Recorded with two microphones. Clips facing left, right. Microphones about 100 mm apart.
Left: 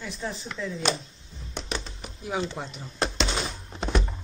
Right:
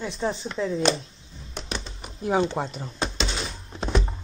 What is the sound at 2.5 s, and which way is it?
Speech, 40° right (ahead or behind).